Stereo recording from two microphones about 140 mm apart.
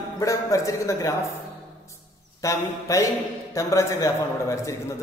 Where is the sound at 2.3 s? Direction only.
20° left (ahead or behind).